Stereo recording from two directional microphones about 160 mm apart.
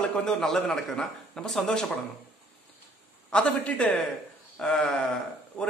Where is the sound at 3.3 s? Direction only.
10° left (ahead or behind).